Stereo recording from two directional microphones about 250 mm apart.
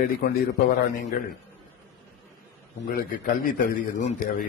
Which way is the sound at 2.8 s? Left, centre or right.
Left.